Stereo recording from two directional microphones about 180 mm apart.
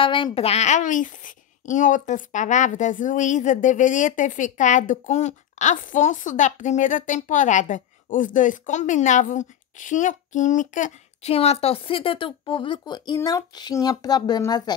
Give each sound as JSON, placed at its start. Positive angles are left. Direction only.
{"t": 0.0, "sound": "a child's voice", "side_deg": 30}